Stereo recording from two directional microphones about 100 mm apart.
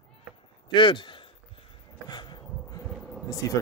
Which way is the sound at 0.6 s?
55° left (ahead or behind).